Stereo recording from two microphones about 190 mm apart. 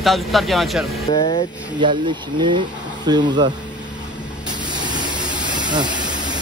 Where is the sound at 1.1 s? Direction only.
30° left (ahead or behind).